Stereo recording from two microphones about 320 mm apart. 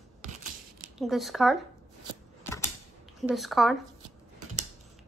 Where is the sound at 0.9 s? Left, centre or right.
Centre.